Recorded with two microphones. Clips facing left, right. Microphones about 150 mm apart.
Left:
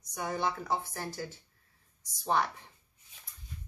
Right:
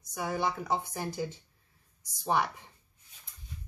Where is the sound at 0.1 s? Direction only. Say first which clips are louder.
Right 1 dB; 5° right (ahead or behind).